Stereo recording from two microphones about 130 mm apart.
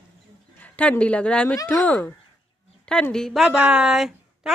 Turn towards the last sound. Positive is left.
turn(degrees=-5)  # may be behind; listen again after turning